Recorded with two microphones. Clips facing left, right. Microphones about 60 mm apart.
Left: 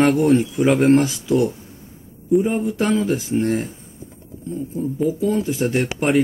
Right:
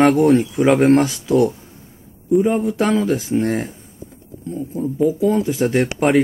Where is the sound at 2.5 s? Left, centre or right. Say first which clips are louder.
Right 3 dB; right.